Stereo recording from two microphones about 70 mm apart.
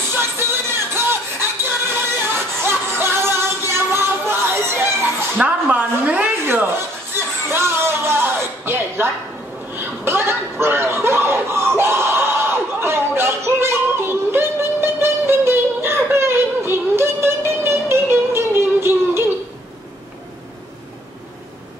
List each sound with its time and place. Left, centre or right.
0.1 s music: right
5.4 s a woman's voice: right
6.4 s a sound: right
9.8 s chuckle: right